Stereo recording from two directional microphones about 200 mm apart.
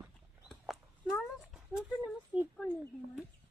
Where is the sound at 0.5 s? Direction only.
Centre (ahead or behind).